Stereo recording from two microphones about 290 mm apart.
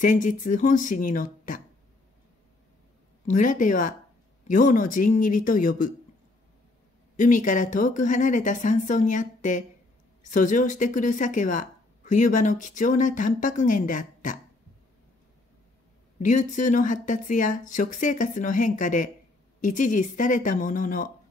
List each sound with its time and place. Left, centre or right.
0.0 s a woman's voice: left
3.3 s a woman's voice: left
7.2 s a woman's voice: left
16.2 s a woman's voice: left